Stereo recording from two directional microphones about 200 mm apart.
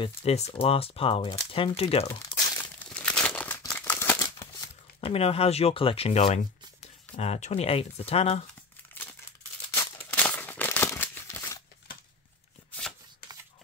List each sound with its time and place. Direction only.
0.0 s speech: 30° left (ahead or behind)
2.0 s crumpling: 15° left (ahead or behind)
3.1 s crumpling: 5° left (ahead or behind); by 6.4 s 30° left (ahead or behind)
7.2 s speech: 35° left (ahead or behind)
9.8 s a sound: 10° left (ahead or behind)